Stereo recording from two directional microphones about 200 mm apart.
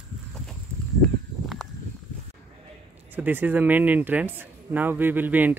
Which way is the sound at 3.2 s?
10° right (ahead or behind).